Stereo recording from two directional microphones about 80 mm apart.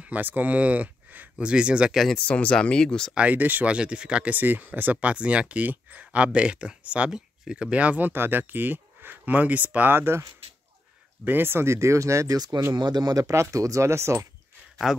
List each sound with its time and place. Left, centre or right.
0.0 s speech: right
2.1 s speech: centre
3.2 s speech: right
11.2 s speech: right
12.7 s speech: right
14.9 s speech: centre